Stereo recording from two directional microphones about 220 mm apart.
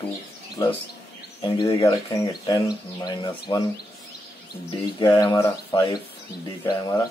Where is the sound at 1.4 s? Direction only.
20° left (ahead or behind).